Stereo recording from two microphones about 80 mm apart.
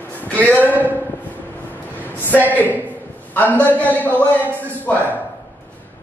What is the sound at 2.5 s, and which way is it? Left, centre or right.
A man's voice, left.